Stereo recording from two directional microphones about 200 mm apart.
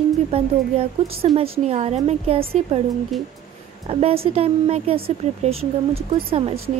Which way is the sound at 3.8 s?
30° right (ahead or behind).